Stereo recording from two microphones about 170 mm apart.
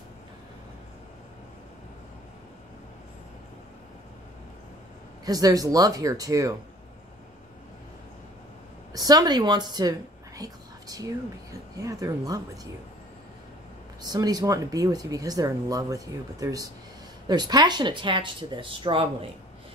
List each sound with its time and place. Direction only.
5.2 s speech: 20° right (ahead or behind)
8.9 s speech: 25° right (ahead or behind)
14.0 s speech: 25° right (ahead or behind)